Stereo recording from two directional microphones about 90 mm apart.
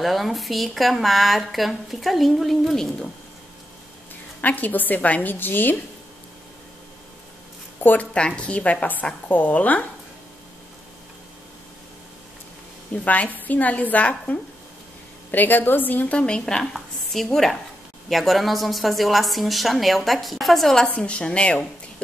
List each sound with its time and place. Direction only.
0.0 s a woman's voice: centre (ahead or behind)
4.4 s a woman's voice: 20° left (ahead or behind)
7.8 s a woman's voice: 15° left (ahead or behind)
13.0 s a woman's voice: 15° left (ahead or behind)